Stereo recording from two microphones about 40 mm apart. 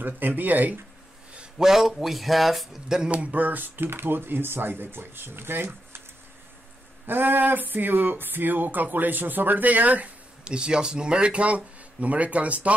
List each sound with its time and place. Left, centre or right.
0.0 s speech: right
1.6 s a man's voice: centre
3.1 s speech: right
7.1 s speech: right
10.4 s speech: right